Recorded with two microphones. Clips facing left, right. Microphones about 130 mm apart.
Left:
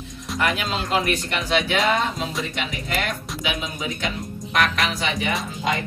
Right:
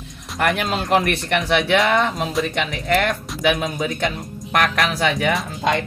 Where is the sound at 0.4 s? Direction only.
55° right (ahead or behind).